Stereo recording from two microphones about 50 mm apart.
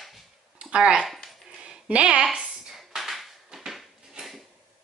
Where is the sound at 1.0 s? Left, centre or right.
Centre.